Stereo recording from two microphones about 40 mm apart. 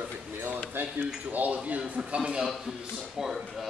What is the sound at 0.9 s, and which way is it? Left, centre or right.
Speech, right.